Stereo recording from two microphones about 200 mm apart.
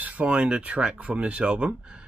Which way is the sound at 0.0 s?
5° right (ahead or behind).